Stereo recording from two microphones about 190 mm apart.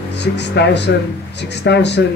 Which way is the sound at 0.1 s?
65° left (ahead or behind).